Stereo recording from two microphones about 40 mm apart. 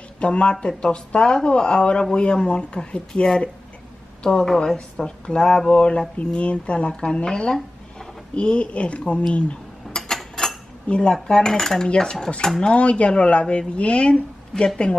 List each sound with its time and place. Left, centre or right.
0.2 s speech: left
4.2 s a woman's voice: left
5.4 s cutlery: centre
5.7 s speech: left
9.9 s a sound: centre
10.9 s speech: left
11.2 s cutlery: centre
12.6 s speech: left